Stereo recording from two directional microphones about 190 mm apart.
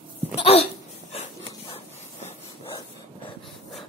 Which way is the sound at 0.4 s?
30° left (ahead or behind).